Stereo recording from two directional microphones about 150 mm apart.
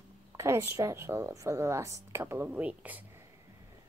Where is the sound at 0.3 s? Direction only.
20° right (ahead or behind).